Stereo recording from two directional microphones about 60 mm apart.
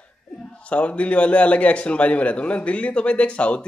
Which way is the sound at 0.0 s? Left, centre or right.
Centre.